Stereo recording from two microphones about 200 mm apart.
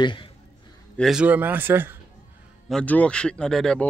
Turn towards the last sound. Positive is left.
turn(degrees=5)  # may be behind; listen again after turning